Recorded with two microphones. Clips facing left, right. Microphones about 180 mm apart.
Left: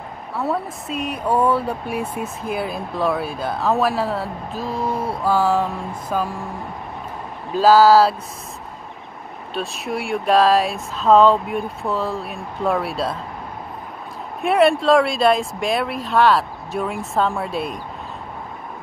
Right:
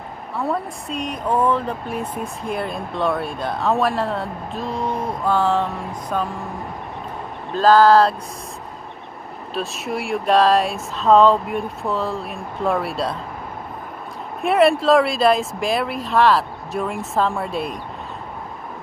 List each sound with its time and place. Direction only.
0.4 s speech: 5° left (ahead or behind)
7.5 s speech: 5° left (ahead or behind)
9.5 s speech: centre (ahead or behind)
14.4 s speech: centre (ahead or behind)